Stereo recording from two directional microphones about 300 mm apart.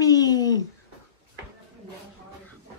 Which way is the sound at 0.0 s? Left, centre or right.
Centre.